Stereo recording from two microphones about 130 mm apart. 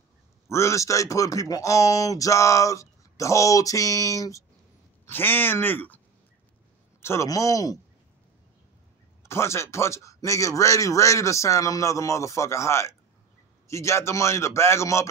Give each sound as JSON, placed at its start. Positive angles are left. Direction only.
{"t": 0.5, "sound": "speech", "side_deg": 20}
{"t": 7.0, "sound": "speech", "side_deg": 20}
{"t": 9.3, "sound": "speech", "side_deg": 20}